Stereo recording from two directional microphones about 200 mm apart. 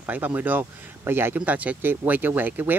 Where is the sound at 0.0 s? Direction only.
10° right (ahead or behind).